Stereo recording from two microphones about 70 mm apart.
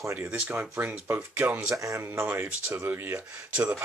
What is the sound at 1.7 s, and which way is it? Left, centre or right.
Speech, right.